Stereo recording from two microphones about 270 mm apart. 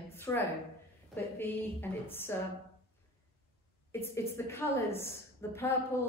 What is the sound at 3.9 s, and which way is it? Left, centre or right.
A woman's voice, centre.